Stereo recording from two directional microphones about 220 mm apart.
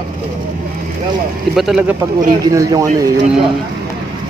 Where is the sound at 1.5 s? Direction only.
5° right (ahead or behind).